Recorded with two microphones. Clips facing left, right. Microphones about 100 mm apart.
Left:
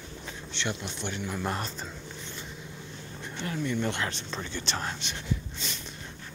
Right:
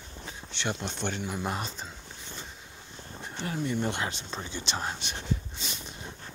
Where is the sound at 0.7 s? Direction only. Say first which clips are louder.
Right 2 dB; 35° right (ahead or behind).